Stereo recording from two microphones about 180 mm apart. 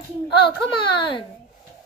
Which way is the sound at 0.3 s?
30° left (ahead or behind).